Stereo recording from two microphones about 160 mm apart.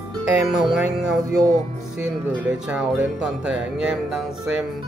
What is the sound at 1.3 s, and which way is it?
Speech, 25° right (ahead or behind).